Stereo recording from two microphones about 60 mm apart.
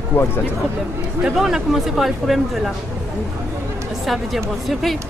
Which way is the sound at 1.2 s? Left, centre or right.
Centre.